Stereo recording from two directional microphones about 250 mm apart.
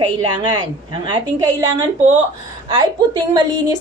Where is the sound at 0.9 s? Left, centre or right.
Centre.